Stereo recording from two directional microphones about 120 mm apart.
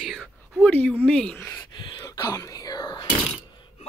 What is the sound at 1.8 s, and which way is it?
Throat clearing, 40° left (ahead or behind).